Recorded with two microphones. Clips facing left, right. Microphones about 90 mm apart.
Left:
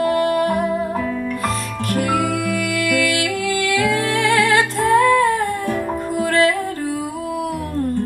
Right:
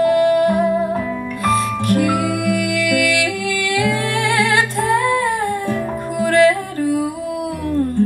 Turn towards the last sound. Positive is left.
turn(degrees=-20)  # may be behind; listen again after turning